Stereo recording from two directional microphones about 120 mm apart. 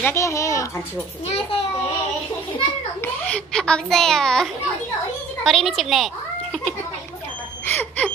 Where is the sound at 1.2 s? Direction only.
55° left (ahead or behind).